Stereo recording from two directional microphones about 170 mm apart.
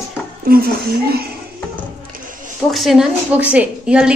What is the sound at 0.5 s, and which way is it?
Speech, 60° right (ahead or behind).